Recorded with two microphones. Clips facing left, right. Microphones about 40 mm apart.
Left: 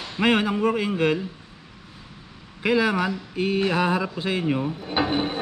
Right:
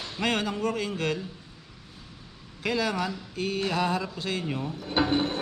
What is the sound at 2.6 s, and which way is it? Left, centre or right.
Mantra, centre.